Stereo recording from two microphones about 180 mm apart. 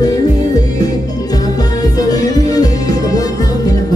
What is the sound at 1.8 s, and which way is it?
Music, 20° left (ahead or behind).